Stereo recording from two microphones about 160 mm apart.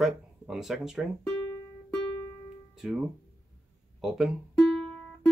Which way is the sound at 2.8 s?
5° right (ahead or behind).